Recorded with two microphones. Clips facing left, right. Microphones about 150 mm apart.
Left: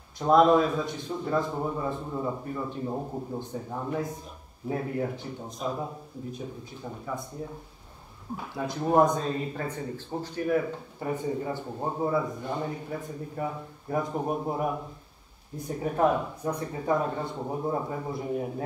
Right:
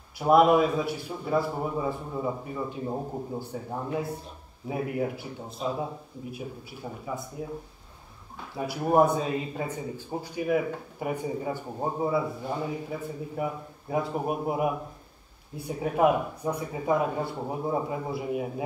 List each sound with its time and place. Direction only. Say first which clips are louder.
0.2 s speech: even; 10° right (ahead or behind)
8.5 s speech: right 1 dB; 10° right (ahead or behind)